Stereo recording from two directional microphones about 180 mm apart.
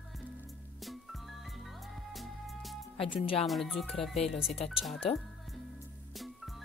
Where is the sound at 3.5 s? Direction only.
Centre (ahead or behind).